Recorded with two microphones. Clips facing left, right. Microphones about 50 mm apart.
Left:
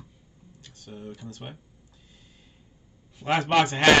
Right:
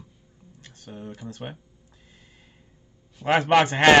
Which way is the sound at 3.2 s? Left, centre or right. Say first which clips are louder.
Right 3 dB; right.